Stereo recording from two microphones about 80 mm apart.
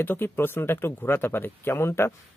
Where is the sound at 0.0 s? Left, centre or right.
Left.